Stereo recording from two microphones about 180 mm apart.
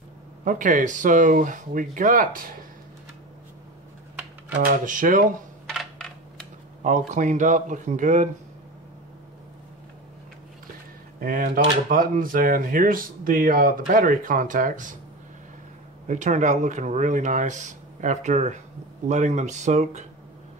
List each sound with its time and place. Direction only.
0.5 s speech: 45° right (ahead or behind)
4.6 s speech: 50° right (ahead or behind)
5.7 s coin: centre (ahead or behind)
6.8 s speech: 45° right (ahead or behind)
11.1 s speech: 50° right (ahead or behind)
16.1 s speech: 40° right (ahead or behind)